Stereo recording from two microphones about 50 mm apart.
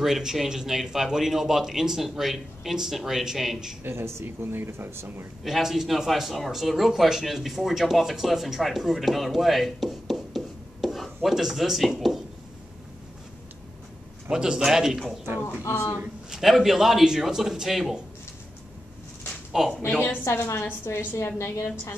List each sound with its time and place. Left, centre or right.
0.0 s speech: centre
3.8 s speech: right
5.4 s speech: centre
14.3 s speech: centre
15.6 s speech: left
16.3 s speech: centre
19.6 s speech: centre
20.2 s a woman's voice: left
20.6 s a woman's voice: left